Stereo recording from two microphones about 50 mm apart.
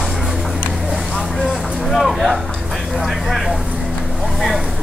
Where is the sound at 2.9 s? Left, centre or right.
Centre.